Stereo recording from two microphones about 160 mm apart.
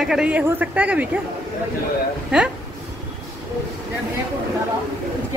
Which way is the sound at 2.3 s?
5° right (ahead or behind).